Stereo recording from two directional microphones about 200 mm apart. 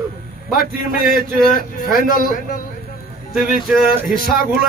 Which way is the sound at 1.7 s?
45° left (ahead or behind).